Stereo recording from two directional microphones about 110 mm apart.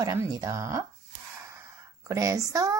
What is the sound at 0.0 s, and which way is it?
Speech, 30° right (ahead or behind).